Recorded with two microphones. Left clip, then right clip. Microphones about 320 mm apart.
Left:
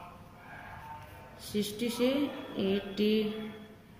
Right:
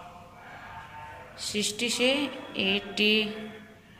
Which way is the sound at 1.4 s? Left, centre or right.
Right.